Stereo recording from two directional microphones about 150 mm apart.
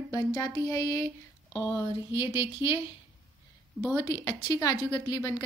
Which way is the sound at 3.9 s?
20° left (ahead or behind).